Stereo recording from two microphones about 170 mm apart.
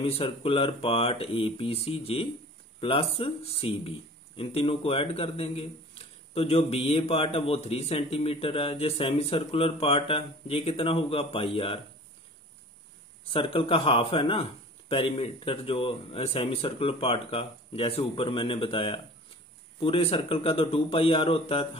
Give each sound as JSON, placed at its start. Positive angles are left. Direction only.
{"t": 0.0, "sound": "speech", "side_deg": 35}
{"t": 13.3, "sound": "speech", "side_deg": 30}